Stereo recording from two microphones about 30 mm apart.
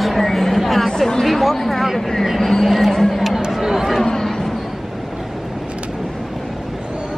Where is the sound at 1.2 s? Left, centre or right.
Centre.